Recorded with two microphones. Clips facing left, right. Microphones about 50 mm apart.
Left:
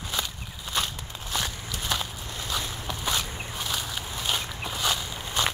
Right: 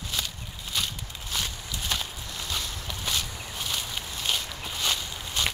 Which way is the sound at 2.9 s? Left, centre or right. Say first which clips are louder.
Left 3 dB; centre.